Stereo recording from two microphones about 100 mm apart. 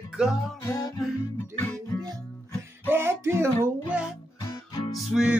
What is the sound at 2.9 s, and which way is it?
Music, 25° right (ahead or behind).